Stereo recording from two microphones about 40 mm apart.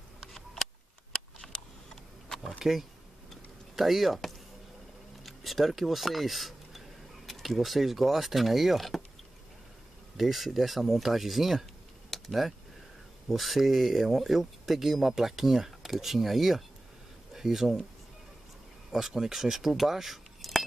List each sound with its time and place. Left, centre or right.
1.1 s a sound: centre
2.6 s speech: centre
3.3 s a sound: centre
5.2 s speech: centre
10.1 s speech: centre
18.9 s speech: centre
19.7 s cutlery: centre